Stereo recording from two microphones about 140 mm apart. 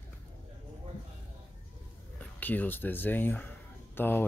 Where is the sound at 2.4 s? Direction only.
10° left (ahead or behind).